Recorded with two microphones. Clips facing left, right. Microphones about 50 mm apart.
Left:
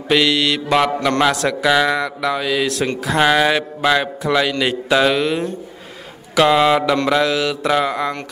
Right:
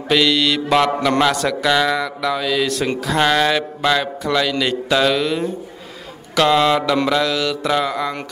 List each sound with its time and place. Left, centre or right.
0.1 s mantra: centre
1.2 s a man's voice: centre